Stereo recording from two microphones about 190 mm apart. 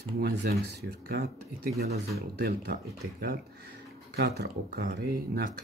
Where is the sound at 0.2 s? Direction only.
60° right (ahead or behind).